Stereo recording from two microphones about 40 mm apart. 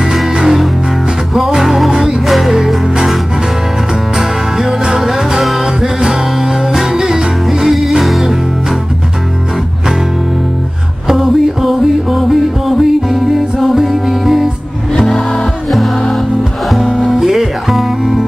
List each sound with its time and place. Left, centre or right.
0.0 s music: centre
2.2 s music: centre
4.2 s music: centre
8.0 s music: centre
11.1 s music: centre
17.0 s music: centre